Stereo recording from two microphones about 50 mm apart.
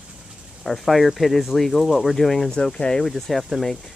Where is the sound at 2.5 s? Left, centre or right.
Centre.